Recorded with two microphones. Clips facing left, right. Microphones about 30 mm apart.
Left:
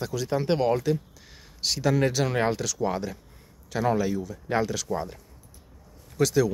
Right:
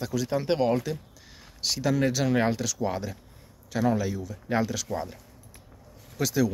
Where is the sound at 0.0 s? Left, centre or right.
Centre.